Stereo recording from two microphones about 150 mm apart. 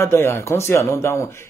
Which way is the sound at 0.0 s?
15° left (ahead or behind).